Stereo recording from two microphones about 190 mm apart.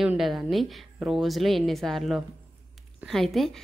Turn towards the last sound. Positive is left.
turn(degrees=0)  # may be behind; listen again after turning